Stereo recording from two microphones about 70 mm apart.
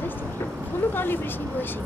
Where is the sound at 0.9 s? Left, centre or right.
Left.